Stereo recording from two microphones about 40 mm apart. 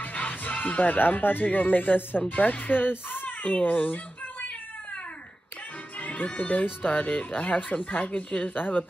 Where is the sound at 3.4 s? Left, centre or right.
Left.